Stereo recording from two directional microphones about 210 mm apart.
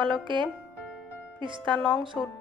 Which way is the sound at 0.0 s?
25° right (ahead or behind).